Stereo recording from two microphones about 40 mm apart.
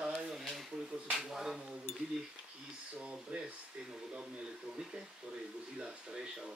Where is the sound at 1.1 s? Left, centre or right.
Centre.